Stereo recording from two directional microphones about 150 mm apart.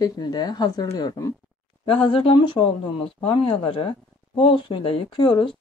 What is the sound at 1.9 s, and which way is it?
Speech, 35° left (ahead or behind).